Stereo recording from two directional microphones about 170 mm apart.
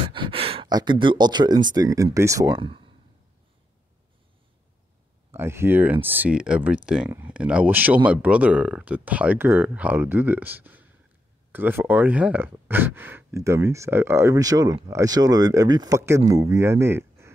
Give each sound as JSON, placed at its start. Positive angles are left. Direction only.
{"t": 0.0, "sound": "speech", "side_deg": -30}
{"t": 2.6, "sound": "speech", "side_deg": -30}
{"t": 5.3, "sound": "speech", "side_deg": -15}